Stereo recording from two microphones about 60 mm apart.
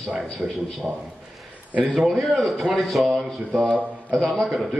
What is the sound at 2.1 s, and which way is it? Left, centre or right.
A man's voice, centre.